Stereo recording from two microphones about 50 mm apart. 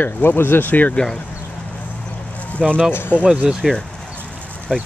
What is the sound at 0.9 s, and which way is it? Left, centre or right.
Speech, centre.